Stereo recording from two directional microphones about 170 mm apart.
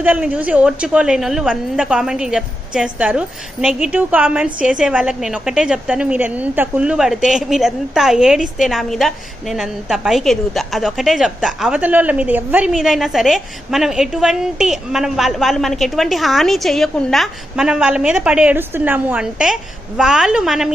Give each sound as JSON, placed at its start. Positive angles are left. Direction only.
{"t": 0.0, "sound": "a woman's voice", "side_deg": -5}